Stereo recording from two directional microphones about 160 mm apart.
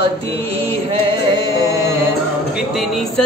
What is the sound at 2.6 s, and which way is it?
Speech, centre (ahead or behind).